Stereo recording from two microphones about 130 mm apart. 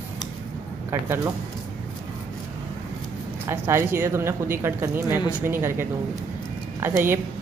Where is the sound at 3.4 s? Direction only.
20° right (ahead or behind).